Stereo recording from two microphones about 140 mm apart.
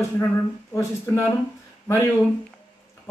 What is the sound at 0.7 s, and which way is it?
Speech, 20° left (ahead or behind).